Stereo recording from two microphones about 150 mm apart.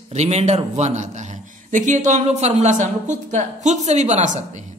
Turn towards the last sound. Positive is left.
turn(degrees=-50)  # may be behind; listen again after turning